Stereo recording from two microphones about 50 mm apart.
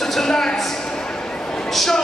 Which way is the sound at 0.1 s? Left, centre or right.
Centre.